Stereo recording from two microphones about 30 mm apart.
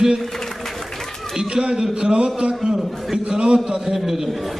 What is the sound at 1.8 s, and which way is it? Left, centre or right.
A man's voice, right.